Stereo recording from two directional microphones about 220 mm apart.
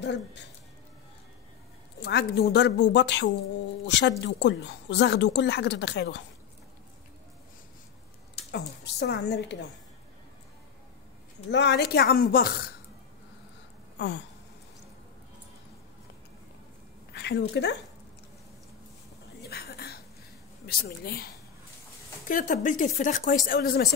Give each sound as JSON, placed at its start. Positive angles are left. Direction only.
{"t": 0.0, "sound": "a woman's voice", "side_deg": 50}
{"t": 2.0, "sound": "a woman's voice", "side_deg": 50}
{"t": 8.5, "sound": "a woman's voice", "side_deg": 50}
{"t": 11.5, "sound": "a woman's voice", "side_deg": 50}
{"t": 13.9, "sound": "a sound", "side_deg": 50}
{"t": 17.1, "sound": "speech", "side_deg": 50}
{"t": 19.4, "sound": "a sound", "side_deg": 45}
{"t": 20.6, "sound": "a woman's voice", "side_deg": 45}
{"t": 22.3, "sound": "speech", "side_deg": 35}